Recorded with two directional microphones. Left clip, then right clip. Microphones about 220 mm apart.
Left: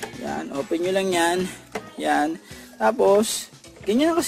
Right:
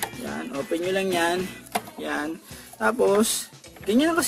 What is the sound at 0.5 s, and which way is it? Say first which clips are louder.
Speech: left 2 dB; 20° left (ahead or behind).